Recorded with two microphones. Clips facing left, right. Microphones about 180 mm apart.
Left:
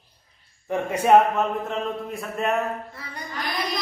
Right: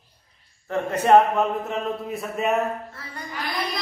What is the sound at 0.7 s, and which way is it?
A man's voice, 10° left (ahead or behind).